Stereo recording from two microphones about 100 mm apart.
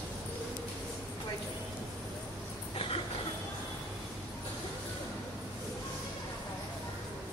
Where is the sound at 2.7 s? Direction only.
65° left (ahead or behind).